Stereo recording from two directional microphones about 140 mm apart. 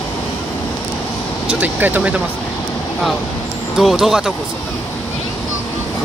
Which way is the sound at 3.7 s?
Centre (ahead or behind).